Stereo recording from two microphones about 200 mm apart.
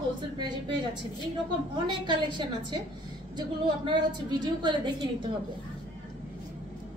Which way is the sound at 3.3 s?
20° right (ahead or behind).